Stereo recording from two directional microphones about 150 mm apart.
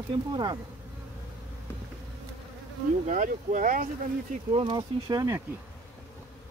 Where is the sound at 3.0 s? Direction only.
60° right (ahead or behind).